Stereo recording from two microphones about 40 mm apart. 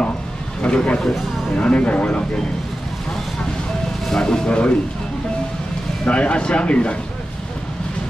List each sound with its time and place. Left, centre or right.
0.6 s a man's voice: left
4.1 s speech: centre
6.0 s speech: left